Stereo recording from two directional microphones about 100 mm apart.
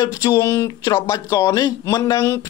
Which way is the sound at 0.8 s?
35° left (ahead or behind).